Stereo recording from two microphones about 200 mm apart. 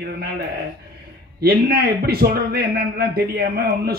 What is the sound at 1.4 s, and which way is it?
A man's voice, 50° right (ahead or behind).